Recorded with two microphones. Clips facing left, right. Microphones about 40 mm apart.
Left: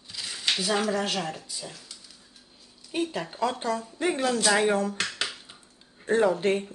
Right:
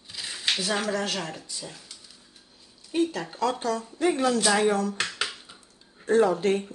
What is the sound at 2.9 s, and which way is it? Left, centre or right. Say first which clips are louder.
Speech: right 3 dB; centre.